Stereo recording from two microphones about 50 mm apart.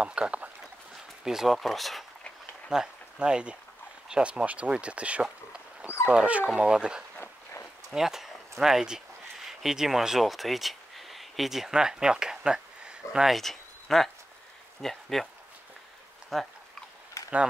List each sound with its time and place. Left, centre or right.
0.0 s speech: right
1.2 s speech: centre
2.7 s speech: centre
5.2 s a sound: centre
6.1 s speech: right
13.3 s speech: centre
16.3 s speech: centre
17.2 s a sound: left